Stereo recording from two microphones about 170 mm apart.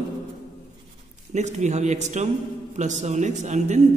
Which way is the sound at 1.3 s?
45° right (ahead or behind).